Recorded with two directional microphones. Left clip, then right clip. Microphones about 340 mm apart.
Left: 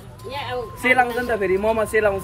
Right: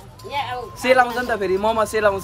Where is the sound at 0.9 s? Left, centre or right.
Centre.